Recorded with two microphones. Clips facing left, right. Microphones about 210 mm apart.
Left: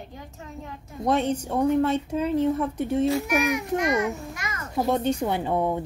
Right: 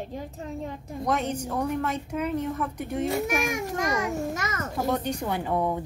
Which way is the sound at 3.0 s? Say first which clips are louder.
Even; 50° right (ahead or behind).